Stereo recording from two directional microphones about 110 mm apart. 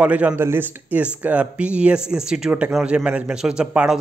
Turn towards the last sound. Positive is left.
turn(degrees=-10)  # may be behind; listen again after turning